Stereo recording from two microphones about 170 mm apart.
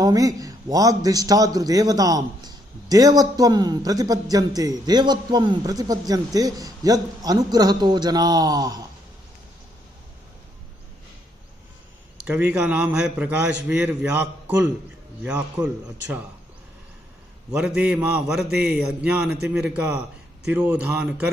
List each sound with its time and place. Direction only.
0.0 s a man's voice: 20° right (ahead or behind)
12.3 s a man's voice: 10° right (ahead or behind)
17.5 s a man's voice: 5° right (ahead or behind)
18.5 s a man's voice: 70° right (ahead or behind)
18.9 s a man's voice: 10° right (ahead or behind)